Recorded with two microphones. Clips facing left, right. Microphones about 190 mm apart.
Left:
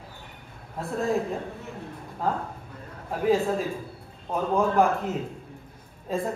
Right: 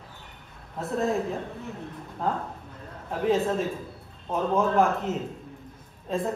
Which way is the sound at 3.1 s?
Centre (ahead or behind).